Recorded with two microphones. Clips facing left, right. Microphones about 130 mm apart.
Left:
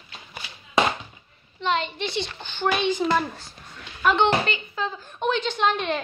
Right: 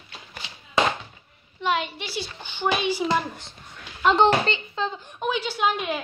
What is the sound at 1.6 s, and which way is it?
A child's voice, 10° right (ahead or behind).